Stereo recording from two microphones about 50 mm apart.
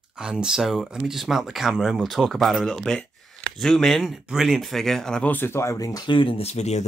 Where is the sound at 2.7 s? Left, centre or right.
Centre.